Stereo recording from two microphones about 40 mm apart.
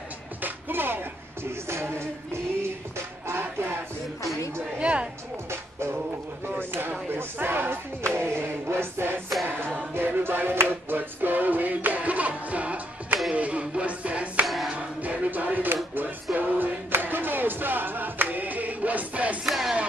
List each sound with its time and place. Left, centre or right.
0.4 s music: right
4.7 s a sound: right
5.5 s music: right
6.7 s a sound: right
9.9 s music: right
14.4 s music: centre
14.7 s music: right
19.4 s music: centre